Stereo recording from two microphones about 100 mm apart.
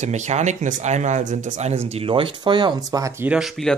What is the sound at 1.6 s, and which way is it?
Speech, 90° right.